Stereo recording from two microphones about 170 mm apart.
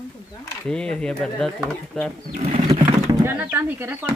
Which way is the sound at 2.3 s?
35° right (ahead or behind).